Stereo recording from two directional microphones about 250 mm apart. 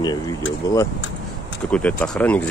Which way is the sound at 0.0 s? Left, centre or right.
Centre.